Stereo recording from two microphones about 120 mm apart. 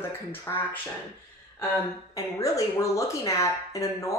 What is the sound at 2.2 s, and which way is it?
A woman's voice, 25° left (ahead or behind).